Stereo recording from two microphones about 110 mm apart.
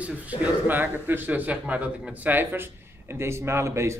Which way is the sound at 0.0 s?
15° right (ahead or behind).